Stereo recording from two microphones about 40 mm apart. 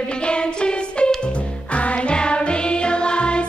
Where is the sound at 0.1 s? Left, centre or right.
Left.